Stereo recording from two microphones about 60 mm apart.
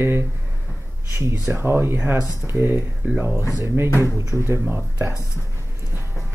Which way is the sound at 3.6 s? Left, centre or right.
Right.